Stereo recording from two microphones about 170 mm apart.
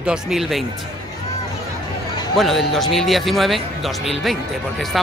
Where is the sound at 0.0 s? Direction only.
5° right (ahead or behind).